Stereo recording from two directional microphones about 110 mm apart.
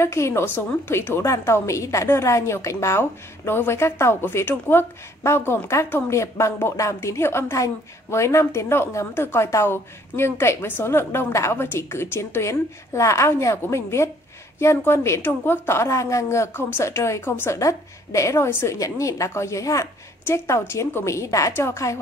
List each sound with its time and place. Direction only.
0.0 s a woman's voice: 25° left (ahead or behind)